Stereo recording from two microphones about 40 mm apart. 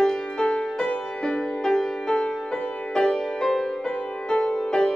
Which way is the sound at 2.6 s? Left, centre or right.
Left.